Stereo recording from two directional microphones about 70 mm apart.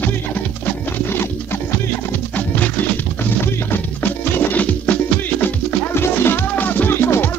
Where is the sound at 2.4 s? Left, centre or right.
Left.